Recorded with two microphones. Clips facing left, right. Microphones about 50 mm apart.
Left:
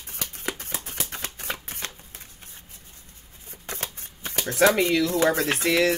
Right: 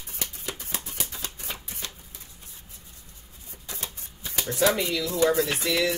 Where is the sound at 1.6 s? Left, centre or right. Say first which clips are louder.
Left 3 dB; left.